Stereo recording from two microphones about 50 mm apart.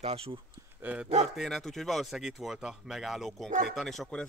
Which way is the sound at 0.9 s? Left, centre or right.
Right.